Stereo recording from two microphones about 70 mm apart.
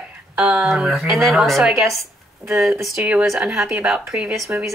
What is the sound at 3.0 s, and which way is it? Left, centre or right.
Speech, centre.